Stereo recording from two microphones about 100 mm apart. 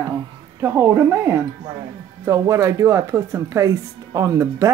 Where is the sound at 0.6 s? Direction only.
25° right (ahead or behind).